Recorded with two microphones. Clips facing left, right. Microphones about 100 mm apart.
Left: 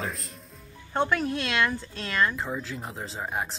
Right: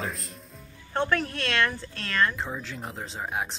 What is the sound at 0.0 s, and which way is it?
Speech, centre (ahead or behind).